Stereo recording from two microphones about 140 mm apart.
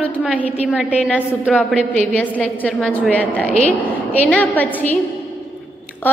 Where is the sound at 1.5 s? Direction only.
5° left (ahead or behind).